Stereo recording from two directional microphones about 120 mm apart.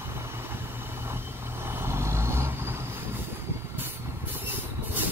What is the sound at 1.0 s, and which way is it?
Vehicle, 20° right (ahead or behind).